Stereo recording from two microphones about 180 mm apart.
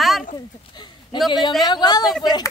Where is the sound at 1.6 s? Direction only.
25° left (ahead or behind).